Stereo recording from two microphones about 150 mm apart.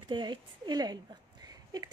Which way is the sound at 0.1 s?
30° right (ahead or behind).